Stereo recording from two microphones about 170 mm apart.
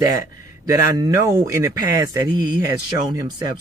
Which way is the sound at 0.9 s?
20° right (ahead or behind).